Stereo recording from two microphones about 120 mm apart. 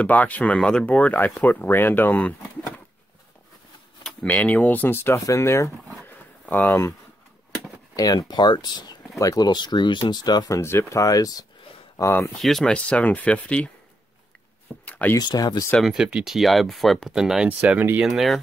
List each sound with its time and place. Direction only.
0.0 s speech: 15° left (ahead or behind)
4.0 s speech: 10° left (ahead or behind)
6.4 s speech: 15° left (ahead or behind)
6.7 s speech: 25° left (ahead or behind)
10.6 s speech: 20° left (ahead or behind)
12.4 s speech: 5° left (ahead or behind)
14.9 s a sound: 10° left (ahead or behind)
15.1 s speech: 35° left (ahead or behind)
15.8 s speech: 5° right (ahead or behind)
18.0 s speech: centre (ahead or behind)